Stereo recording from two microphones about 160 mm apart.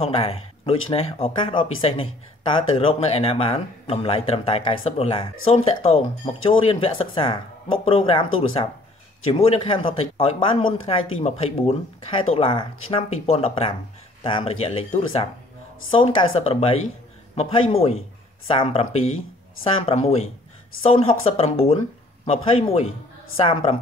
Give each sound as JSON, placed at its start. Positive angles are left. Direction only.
{"t": 0.0, "sound": "speech", "side_deg": 35}